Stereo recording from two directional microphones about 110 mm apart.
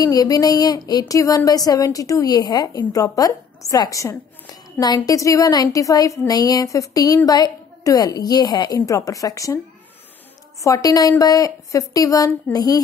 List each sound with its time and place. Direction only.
0.0 s speech: 35° left (ahead or behind)
10.6 s speech: 30° left (ahead or behind)